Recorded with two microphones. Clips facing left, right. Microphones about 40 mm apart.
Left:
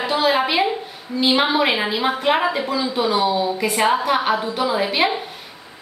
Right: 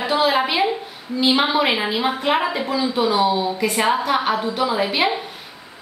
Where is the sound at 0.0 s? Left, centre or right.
Centre.